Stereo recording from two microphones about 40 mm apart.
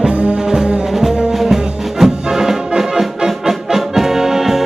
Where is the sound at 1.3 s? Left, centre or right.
Centre.